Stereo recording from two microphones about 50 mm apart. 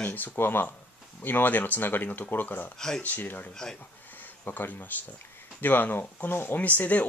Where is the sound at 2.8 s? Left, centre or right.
Centre.